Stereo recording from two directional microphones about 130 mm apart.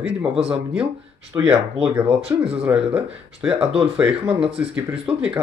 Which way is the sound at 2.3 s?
20° right (ahead or behind).